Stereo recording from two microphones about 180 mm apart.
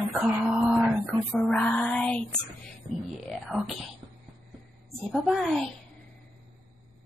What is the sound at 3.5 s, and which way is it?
Speech, centre (ahead or behind).